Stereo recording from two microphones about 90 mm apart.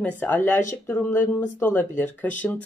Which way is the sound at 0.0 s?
20° left (ahead or behind).